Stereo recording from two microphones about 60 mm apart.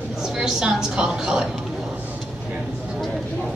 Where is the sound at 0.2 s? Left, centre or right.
Centre.